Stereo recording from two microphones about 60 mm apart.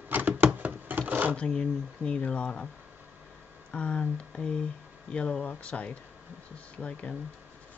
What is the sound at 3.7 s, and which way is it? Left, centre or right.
Speech, centre.